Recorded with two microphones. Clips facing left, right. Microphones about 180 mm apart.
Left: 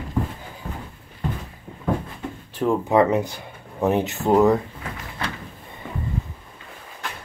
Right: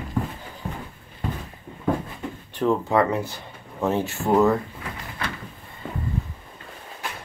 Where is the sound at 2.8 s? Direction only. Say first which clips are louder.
Left 3 dB; 20° left (ahead or behind).